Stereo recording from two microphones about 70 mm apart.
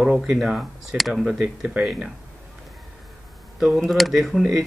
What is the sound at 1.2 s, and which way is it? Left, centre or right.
Speech, centre.